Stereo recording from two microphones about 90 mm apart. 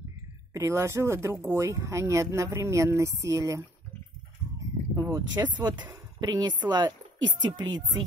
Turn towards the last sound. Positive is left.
turn(degrees=-50)  # may be behind; listen again after turning